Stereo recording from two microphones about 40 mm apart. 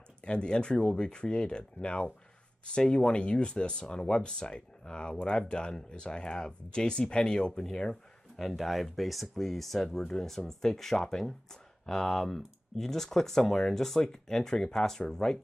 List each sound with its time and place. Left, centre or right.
0.2 s speech: left
7.9 s speech: centre
9.8 s speech: centre